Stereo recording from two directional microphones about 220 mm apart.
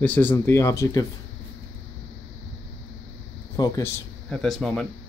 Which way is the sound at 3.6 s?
15° left (ahead or behind).